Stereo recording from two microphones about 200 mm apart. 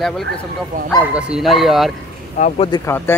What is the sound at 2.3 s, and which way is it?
Speech, 35° left (ahead or behind).